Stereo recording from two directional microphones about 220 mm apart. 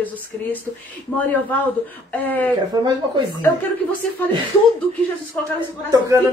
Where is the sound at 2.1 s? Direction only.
10° left (ahead or behind).